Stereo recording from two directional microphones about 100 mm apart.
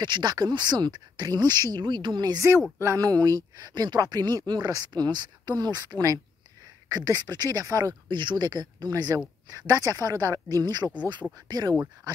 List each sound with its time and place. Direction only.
0.0 s speech: 45° right (ahead or behind)